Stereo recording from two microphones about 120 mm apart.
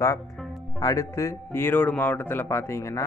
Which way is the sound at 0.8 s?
25° left (ahead or behind).